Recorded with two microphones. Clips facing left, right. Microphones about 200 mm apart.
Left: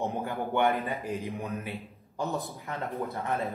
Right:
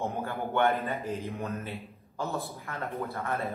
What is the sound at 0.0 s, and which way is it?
Speech, 15° left (ahead or behind).